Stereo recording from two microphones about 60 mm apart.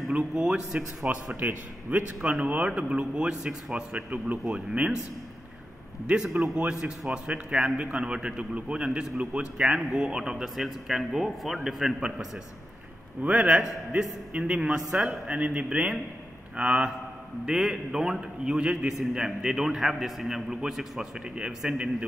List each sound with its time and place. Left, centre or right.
0.1 s a man's voice: centre
1.0 s a man's voice: right; by 4.6 s centre
6.0 s a man's voice: centre
9.8 s a man's voice: centre
13.2 s a man's voice: right